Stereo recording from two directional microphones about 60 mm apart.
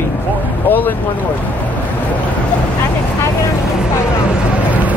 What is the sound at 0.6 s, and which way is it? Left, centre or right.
Speech, left.